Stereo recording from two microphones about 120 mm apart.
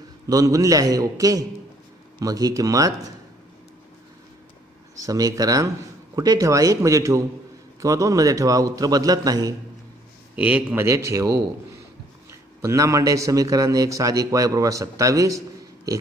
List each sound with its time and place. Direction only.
0.3 s a man's voice: 30° right (ahead or behind)
4.9 s a man's voice: 30° right (ahead or behind)
10.3 s a man's voice: 10° right (ahead or behind); by 16.0 s 30° right (ahead or behind)